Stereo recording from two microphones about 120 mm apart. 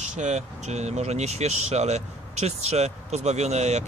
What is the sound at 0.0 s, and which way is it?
Speech, 75° right (ahead or behind).